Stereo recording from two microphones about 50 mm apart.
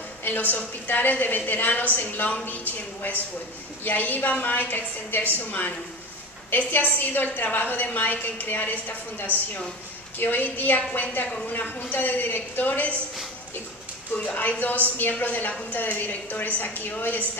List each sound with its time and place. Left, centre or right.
0.2 s a woman's voice: left
3.8 s a woman's voice: left
6.7 s a woman's voice: left
14.1 s a woman's voice: left